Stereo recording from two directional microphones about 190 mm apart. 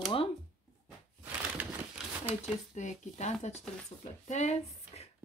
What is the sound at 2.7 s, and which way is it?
Speech, 40° left (ahead or behind).